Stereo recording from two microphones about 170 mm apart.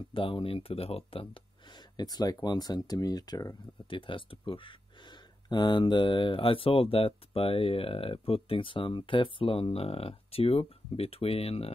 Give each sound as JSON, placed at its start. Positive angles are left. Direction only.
{"t": 0.1, "sound": "speech", "side_deg": 30}